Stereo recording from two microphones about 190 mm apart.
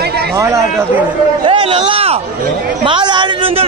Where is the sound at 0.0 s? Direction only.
55° right (ahead or behind).